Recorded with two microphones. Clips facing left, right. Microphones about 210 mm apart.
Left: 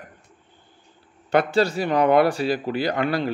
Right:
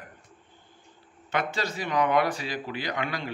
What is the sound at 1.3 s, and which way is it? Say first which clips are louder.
Speech: left 10 dB; 35° left (ahead or behind).